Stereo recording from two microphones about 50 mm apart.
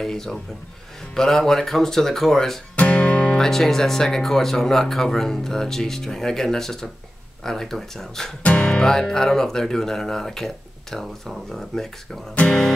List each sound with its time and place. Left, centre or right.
0.0 s speech: centre
2.7 s music: left
3.3 s speech: centre
8.4 s speech: left